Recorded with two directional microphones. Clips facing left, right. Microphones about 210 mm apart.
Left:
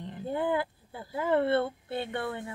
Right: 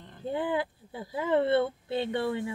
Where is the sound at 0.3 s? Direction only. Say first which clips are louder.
Even; 15° right (ahead or behind).